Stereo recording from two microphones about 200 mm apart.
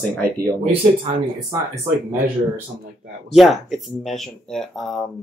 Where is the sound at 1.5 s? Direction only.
15° right (ahead or behind).